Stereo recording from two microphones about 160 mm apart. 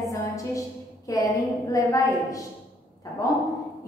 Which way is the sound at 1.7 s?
20° left (ahead or behind).